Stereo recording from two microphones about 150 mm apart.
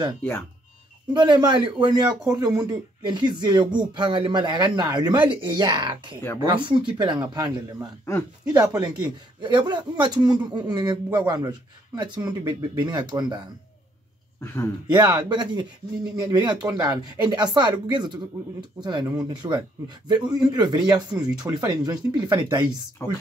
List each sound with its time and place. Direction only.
1.1 s a man's voice: 30° right (ahead or behind)
8.0 s speech: 15° left (ahead or behind)
8.6 s a man's voice: 25° right (ahead or behind)
14.4 s speech: 15° left (ahead or behind)
14.9 s a man's voice: 25° right (ahead or behind)
23.0 s speech: 20° left (ahead or behind)